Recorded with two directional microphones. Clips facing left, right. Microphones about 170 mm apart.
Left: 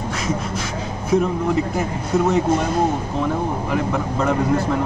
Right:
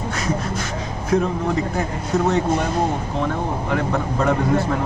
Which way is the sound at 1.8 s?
Centre (ahead or behind).